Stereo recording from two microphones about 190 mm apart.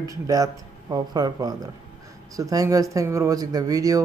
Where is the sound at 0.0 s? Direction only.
20° right (ahead or behind).